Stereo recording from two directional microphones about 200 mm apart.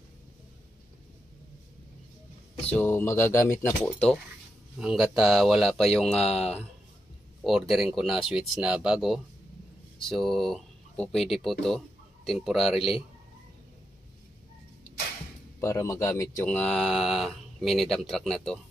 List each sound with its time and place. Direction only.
2.6 s speech: 10° left (ahead or behind)
15.6 s speech: 15° left (ahead or behind)